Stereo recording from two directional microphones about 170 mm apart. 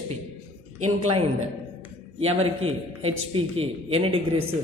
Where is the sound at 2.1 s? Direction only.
35° right (ahead or behind).